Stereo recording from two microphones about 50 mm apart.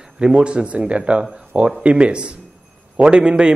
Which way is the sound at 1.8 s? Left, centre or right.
Right.